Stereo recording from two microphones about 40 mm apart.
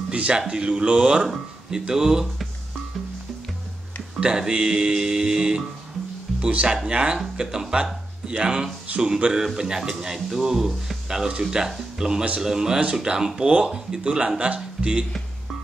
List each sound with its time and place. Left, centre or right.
0.1 s speech: right
4.2 s speech: right
6.4 s speech: right
8.9 s speech: right
9.6 s speech: centre; by 14.9 s right